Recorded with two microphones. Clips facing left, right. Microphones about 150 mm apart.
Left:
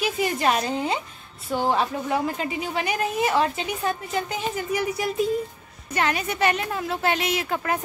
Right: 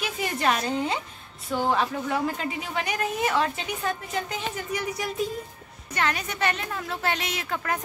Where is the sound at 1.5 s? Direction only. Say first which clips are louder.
Left 2 dB; 25° left (ahead or behind).